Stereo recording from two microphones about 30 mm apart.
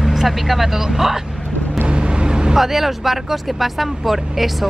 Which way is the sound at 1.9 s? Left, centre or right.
Right.